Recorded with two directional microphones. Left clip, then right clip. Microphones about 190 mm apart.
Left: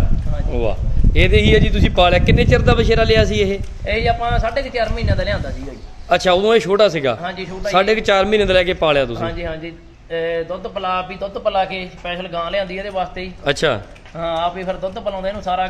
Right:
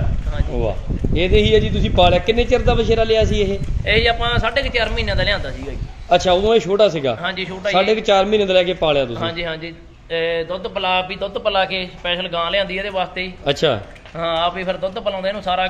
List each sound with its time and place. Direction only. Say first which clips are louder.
0.6 s a man's voice: left 1 dB; centre (ahead or behind)
3.8 s a man's voice: right 2 dB; 30° right (ahead or behind)
6.0 s a man's voice: even; 5° left (ahead or behind)
7.2 s a man's voice: right 2 dB; 15° right (ahead or behind)
7.7 s a man's voice: left 1 dB; 5° left (ahead or behind)
9.2 s a man's voice: right 1 dB; 15° right (ahead or behind)
13.5 s a man's voice: left 1 dB; centre (ahead or behind)